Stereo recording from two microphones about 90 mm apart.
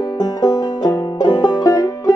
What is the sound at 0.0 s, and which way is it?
Music, 50° left (ahead or behind).